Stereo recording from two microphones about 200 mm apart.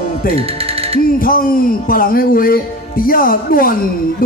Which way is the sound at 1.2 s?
45° left (ahead or behind).